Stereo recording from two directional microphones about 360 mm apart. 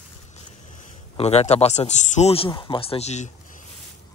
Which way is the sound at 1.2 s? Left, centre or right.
Centre.